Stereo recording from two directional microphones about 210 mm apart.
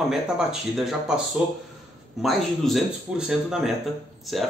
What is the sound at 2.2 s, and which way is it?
Speech, centre (ahead or behind).